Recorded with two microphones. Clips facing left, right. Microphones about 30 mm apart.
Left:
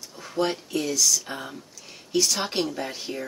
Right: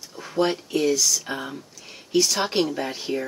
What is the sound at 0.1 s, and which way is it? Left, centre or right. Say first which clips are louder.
Speech: right 3 dB; centre.